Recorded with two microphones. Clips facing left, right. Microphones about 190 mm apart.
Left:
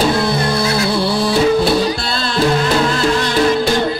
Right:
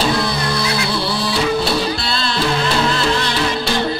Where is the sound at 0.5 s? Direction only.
50° left (ahead or behind).